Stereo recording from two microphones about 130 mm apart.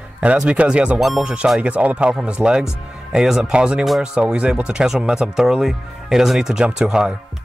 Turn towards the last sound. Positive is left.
turn(degrees=-5)  # may be behind; listen again after turning